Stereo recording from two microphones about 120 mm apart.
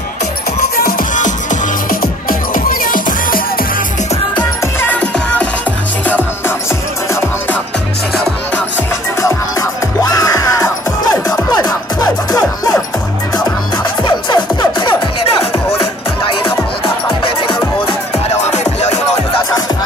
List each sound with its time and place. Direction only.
1.1 s music: 90° left
9.2 s music: 30° left (ahead or behind)
14.0 s music: 40° left (ahead or behind)
18.3 s music: 70° left (ahead or behind)